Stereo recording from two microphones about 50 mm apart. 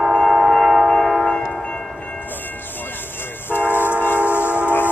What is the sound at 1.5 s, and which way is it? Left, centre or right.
Train, left.